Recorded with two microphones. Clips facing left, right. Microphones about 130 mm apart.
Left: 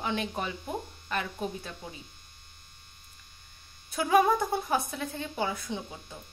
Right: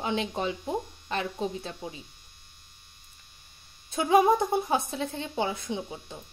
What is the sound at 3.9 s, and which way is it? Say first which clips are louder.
Speech: right 2 dB; 25° right (ahead or behind).